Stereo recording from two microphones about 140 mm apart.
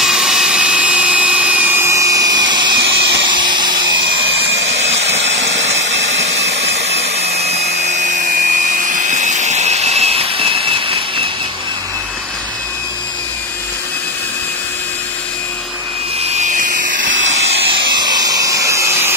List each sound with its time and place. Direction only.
0.0 s a sound: 5° right (ahead or behind); by 11.2 s 40° right (ahead or behind)
16.3 s tools: 65° right (ahead or behind)
17.8 s vacuum cleaner: 30° right (ahead or behind)